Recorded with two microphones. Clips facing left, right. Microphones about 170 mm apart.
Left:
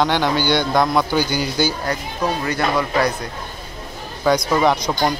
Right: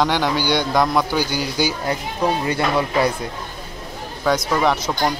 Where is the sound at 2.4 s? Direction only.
25° right (ahead or behind).